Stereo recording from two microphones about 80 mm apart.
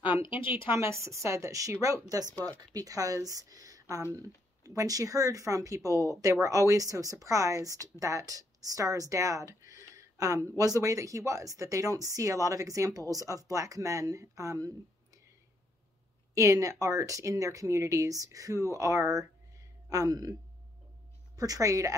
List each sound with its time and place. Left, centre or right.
0.3 s speech: left
0.6 s a woman's voice: right
7.7 s speech: left
8.0 s speech: right
16.3 s speech: right
21.4 s speech: right